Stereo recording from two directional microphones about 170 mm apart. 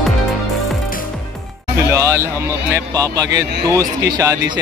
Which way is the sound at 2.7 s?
20° right (ahead or behind).